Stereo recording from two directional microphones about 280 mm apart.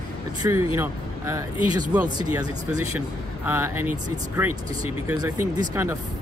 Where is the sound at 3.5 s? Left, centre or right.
Centre.